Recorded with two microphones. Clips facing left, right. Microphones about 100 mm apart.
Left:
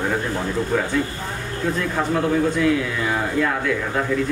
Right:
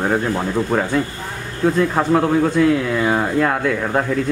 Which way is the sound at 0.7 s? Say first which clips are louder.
Right 1 dB; 50° right (ahead or behind).